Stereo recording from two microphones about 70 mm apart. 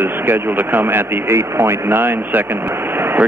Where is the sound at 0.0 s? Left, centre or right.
Right.